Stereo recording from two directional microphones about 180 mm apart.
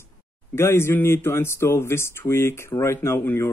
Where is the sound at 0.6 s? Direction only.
15° left (ahead or behind).